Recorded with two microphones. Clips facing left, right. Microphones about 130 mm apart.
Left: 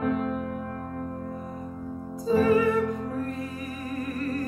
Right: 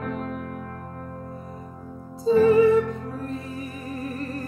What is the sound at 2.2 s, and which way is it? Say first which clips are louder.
Music: right 5 dB; 25° right (ahead or behind).